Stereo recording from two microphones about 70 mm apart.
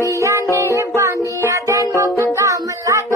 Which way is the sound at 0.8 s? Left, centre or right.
Right.